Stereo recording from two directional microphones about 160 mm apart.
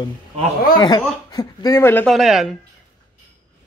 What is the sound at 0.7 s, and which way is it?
A man's voice, 30° left (ahead or behind).